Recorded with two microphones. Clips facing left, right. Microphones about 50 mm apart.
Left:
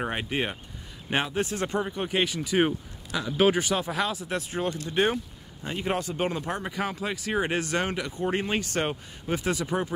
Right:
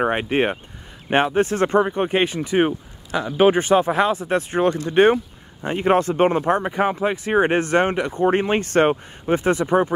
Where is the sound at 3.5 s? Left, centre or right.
Right.